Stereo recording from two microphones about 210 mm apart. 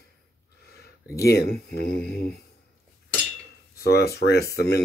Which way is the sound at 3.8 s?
50° left (ahead or behind).